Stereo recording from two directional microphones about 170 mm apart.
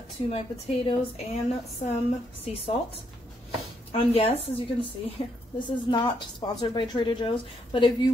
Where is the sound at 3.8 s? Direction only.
35° left (ahead or behind).